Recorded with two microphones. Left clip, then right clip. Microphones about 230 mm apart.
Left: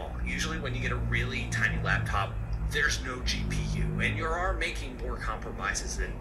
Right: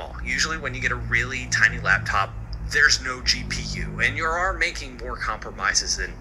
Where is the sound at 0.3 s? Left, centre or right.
Right.